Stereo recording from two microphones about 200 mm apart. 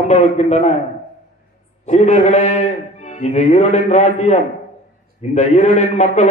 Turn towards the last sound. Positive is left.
turn(degrees=35)  # may be behind; listen again after turning